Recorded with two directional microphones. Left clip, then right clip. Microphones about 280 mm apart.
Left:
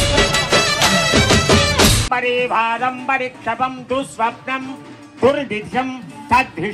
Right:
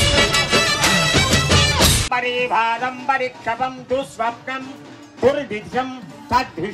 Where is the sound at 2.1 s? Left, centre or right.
Left.